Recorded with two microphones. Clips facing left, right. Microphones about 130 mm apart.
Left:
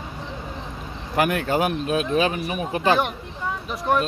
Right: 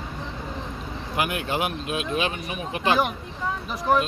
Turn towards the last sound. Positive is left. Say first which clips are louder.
# even
turn(degrees=0)  # may be behind; listen again after turning